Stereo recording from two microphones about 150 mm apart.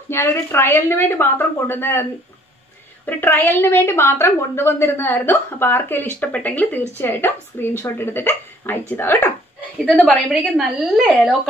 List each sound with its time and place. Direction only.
0.1 s a woman's voice: 15° left (ahead or behind)
3.1 s a woman's voice: 15° left (ahead or behind)
9.8 s a woman's voice: 5° left (ahead or behind)